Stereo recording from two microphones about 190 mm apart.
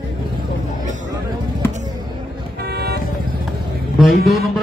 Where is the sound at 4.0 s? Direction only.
Centre (ahead or behind).